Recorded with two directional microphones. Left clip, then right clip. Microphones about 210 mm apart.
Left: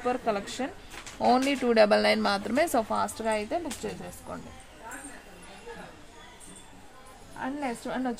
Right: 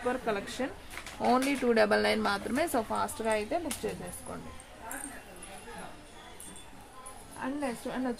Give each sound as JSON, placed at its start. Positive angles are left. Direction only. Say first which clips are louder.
{"t": 0.1, "sound": "speech", "louder": "left 4 dB", "side_deg": 25}
{"t": 7.3, "sound": "a woman's voice", "louder": "left 2 dB", "side_deg": 35}